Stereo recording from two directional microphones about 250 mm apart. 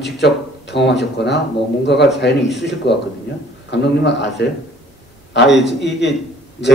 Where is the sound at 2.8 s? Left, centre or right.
Left.